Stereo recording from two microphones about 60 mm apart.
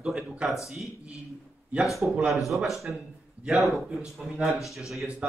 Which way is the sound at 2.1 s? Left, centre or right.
Centre.